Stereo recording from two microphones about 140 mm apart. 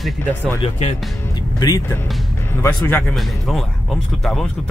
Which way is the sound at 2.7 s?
15° left (ahead or behind).